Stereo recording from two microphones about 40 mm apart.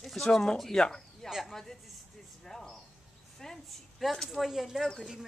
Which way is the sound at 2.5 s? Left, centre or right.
Centre.